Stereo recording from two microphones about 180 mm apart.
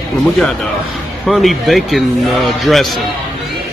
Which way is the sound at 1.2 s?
Centre (ahead or behind).